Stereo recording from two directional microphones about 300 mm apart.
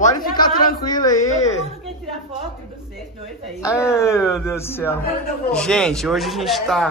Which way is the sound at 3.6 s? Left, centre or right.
Centre.